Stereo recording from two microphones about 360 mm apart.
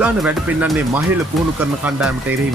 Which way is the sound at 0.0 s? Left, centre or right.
Centre.